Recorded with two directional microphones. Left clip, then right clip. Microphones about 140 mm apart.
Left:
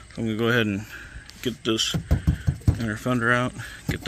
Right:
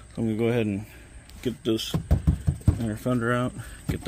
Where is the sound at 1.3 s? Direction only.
15° right (ahead or behind).